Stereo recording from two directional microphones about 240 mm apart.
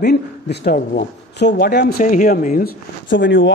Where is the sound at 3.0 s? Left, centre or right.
Left.